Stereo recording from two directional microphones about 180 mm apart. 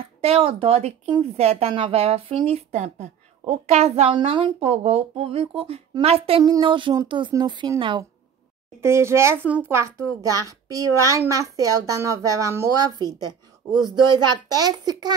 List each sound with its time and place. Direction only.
0.2 s speech: 30° right (ahead or behind)
8.8 s a child's voice: 15° right (ahead or behind)